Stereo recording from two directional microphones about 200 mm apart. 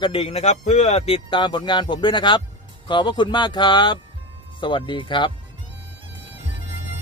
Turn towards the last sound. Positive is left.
turn(degrees=25)  # may be behind; listen again after turning